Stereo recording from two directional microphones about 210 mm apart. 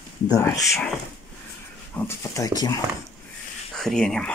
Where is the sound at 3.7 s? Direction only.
5° left (ahead or behind).